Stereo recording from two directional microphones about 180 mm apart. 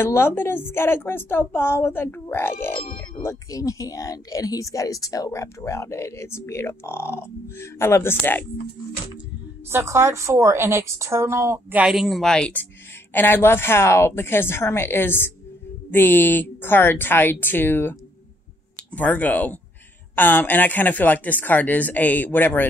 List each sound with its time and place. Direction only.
0.0 s speech: 15° left (ahead or behind)
9.7 s a woman's voice: 15° right (ahead or behind); by 17.9 s 10° left (ahead or behind)
18.9 s speech: 10° left (ahead or behind)